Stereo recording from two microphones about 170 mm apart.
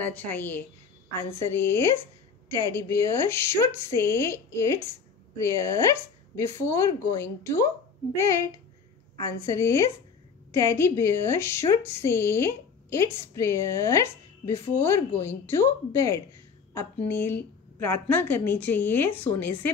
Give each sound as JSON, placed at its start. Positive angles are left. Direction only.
{"t": 0.0, "sound": "a woman's voice", "side_deg": 10}
{"t": 8.1, "sound": "a woman's voice", "side_deg": 20}